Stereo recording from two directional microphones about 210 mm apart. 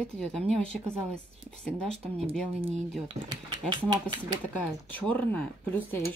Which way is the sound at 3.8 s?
15° right (ahead or behind).